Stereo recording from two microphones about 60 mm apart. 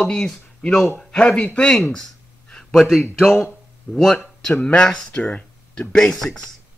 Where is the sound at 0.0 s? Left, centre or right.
Centre.